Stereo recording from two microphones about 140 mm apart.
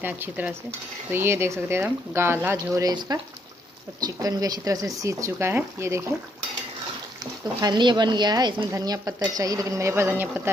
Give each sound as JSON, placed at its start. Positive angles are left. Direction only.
{"t": 0.0, "sound": "speech", "side_deg": -15}
{"t": 2.7, "sound": "speech", "side_deg": -30}
{"t": 7.6, "sound": "speech", "side_deg": -30}